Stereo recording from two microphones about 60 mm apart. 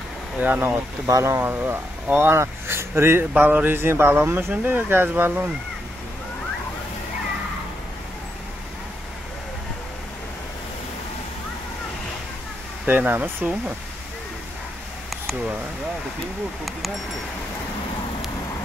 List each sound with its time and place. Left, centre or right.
0.4 s speech: right
1.0 s speech: right
1.3 s speech: right
2.3 s speech: right
3.3 s speech: right
3.7 s speech: right
12.8 s speech: right